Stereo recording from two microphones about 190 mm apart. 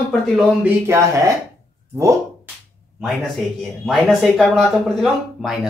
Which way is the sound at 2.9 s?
Centre (ahead or behind).